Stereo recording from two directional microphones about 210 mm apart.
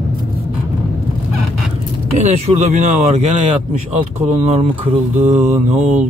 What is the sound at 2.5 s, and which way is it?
Speech, 35° right (ahead or behind).